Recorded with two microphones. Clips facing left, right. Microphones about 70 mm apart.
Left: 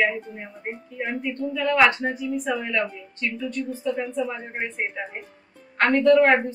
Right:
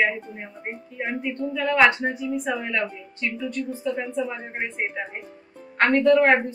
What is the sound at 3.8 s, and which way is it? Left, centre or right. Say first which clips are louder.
A woman's voice: left 1 dB; centre.